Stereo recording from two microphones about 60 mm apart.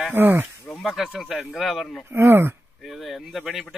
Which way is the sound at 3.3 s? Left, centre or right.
Centre.